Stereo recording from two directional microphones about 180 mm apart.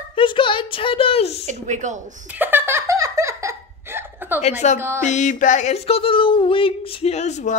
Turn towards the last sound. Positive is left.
turn(degrees=40)  # may be behind; listen again after turning